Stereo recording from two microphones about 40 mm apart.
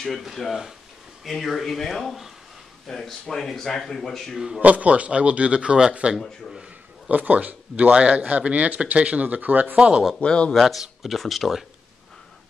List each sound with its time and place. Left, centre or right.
0.2 s speech: centre
2.9 s speech: centre
4.6 s speech: right
7.1 s speech: right
9.8 s speech: right
10.2 s speech: left
10.5 s speech: centre